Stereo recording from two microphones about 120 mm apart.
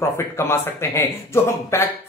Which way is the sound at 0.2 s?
20° left (ahead or behind).